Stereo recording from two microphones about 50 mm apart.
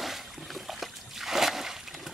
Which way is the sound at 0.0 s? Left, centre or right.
Centre.